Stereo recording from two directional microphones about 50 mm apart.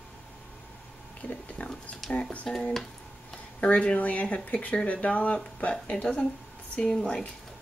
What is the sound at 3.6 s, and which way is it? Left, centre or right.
Speech, left.